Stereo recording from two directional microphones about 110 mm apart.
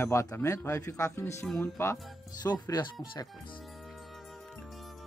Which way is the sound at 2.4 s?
40° left (ahead or behind).